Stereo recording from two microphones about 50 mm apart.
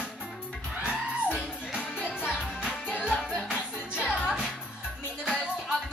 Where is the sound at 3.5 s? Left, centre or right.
Centre.